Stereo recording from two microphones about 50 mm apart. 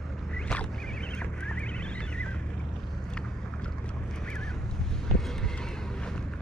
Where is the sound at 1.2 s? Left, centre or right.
Left.